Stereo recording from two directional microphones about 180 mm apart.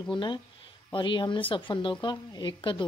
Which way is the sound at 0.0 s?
25° left (ahead or behind).